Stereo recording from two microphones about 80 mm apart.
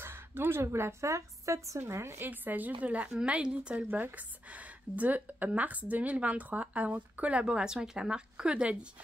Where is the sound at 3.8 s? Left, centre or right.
Right.